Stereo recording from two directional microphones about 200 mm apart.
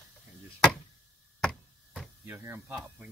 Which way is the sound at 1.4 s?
5° left (ahead or behind).